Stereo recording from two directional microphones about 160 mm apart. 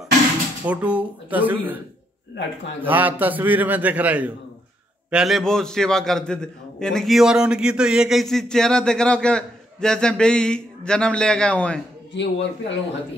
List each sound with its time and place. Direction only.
0.7 s a man's voice: 10° right (ahead or behind)
2.8 s a man's voice: 10° right (ahead or behind); by 11.8 s 5° left (ahead or behind)
12.1 s speech: 90° left